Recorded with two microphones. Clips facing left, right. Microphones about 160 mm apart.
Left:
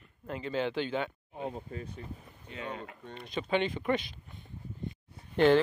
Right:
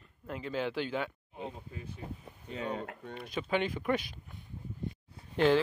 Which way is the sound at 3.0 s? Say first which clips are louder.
Even; 5° right (ahead or behind).